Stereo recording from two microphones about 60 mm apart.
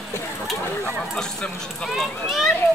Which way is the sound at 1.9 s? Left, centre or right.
Centre.